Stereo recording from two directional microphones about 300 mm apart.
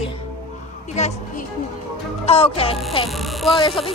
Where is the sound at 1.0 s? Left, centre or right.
Left.